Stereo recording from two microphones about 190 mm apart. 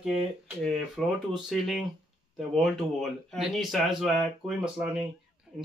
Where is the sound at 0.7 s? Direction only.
Centre (ahead or behind).